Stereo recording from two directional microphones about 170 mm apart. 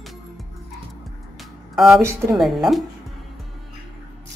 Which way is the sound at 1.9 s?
15° right (ahead or behind).